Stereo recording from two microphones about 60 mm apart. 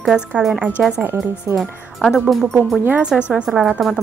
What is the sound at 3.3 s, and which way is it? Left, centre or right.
Speech, centre.